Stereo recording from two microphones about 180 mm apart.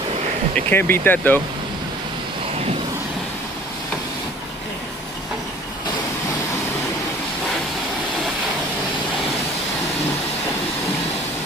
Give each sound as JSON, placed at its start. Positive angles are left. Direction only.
{"t": 0.6, "sound": "speech", "side_deg": 10}